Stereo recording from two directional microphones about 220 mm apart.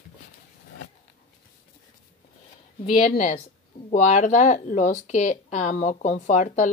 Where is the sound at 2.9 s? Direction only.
35° left (ahead or behind).